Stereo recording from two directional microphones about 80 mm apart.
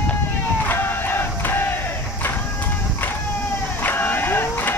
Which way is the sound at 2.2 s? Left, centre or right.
Left.